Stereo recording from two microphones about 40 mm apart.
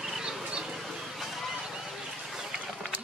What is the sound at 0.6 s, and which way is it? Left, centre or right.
Goose, centre.